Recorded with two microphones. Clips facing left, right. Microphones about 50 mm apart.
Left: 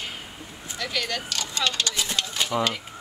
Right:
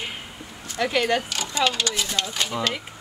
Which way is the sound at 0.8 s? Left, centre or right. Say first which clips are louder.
Right 8 dB; right.